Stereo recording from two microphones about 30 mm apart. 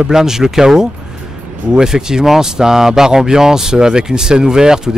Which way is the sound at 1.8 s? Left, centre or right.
Right.